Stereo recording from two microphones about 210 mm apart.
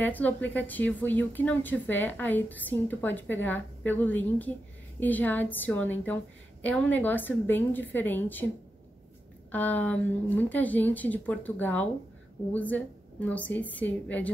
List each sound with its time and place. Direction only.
0.0 s a woman's voice: 10° left (ahead or behind)
9.5 s a woman's voice: 10° left (ahead or behind)